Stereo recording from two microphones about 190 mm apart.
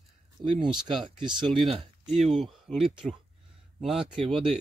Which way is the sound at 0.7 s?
5° right (ahead or behind).